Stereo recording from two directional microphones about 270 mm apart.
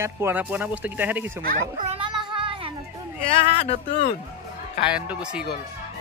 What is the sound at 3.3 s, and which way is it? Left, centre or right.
Speech, left.